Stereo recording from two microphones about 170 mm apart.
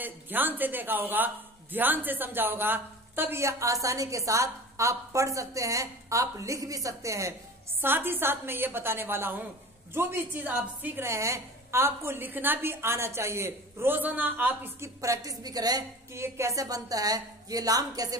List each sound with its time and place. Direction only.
0.0 s a woman's voice: 10° right (ahead or behind)